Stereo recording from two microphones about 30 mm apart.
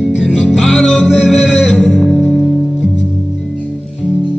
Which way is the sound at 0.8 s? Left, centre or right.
Centre.